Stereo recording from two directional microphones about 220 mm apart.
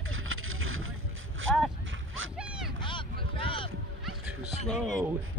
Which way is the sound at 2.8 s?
20° left (ahead or behind).